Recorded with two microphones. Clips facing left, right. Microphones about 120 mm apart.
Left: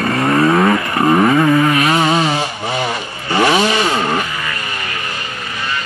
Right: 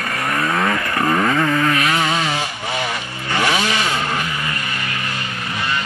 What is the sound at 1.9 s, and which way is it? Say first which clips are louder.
Vehicle: left 5 dB; 30° left (ahead or behind).